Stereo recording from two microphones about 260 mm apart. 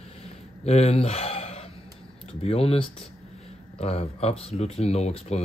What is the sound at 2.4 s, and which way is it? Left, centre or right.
Speech, left.